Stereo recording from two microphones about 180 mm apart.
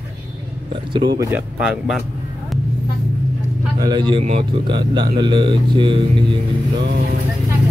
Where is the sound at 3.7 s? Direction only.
25° right (ahead or behind).